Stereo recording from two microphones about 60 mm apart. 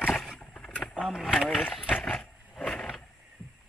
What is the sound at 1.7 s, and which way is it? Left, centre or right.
Speech, left.